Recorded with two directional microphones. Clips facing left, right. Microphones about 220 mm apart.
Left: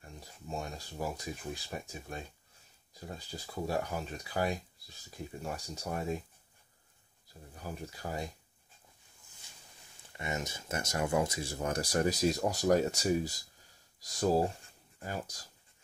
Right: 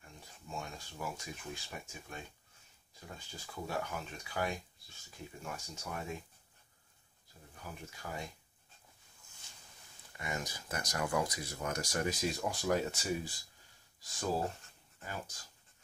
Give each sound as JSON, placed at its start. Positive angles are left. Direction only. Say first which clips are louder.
{"t": 0.0, "sound": "speech", "louder": "left 5 dB", "side_deg": 35}
{"t": 7.6, "sound": "speech", "louder": "left 6 dB", "side_deg": 35}
{"t": 10.1, "sound": "speech", "louder": "left 3 dB", "side_deg": 25}